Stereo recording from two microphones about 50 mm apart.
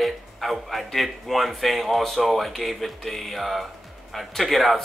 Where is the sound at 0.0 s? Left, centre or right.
Centre.